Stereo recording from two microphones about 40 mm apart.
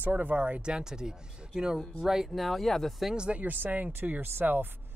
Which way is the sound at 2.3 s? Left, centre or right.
Centre.